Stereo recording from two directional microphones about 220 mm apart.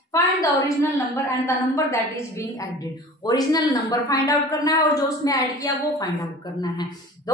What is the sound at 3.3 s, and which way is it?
A woman's voice, 15° left (ahead or behind).